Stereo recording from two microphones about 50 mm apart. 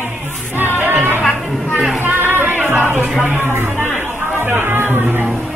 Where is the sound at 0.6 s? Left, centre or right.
Right.